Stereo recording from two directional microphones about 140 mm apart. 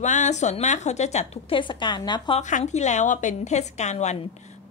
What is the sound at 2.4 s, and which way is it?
A woman's voice, 55° left (ahead or behind).